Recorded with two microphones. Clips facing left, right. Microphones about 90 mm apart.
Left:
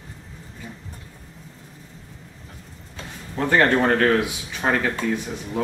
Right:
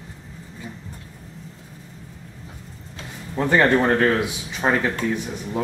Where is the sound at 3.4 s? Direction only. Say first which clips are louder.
Right 1 dB; 10° right (ahead or behind).